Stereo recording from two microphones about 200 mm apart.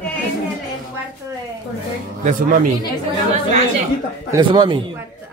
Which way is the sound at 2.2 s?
40° right (ahead or behind).